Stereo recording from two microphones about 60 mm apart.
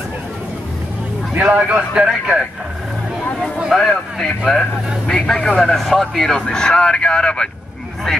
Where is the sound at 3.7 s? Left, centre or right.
Centre.